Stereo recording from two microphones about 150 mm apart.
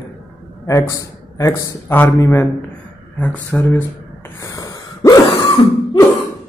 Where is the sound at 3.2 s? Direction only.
10° left (ahead or behind).